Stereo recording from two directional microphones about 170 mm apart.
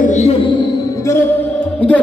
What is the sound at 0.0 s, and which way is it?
Music, 40° left (ahead or behind).